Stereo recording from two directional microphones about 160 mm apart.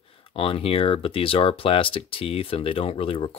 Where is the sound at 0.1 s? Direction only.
35° left (ahead or behind).